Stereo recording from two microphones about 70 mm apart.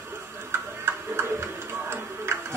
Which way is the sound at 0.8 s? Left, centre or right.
Right.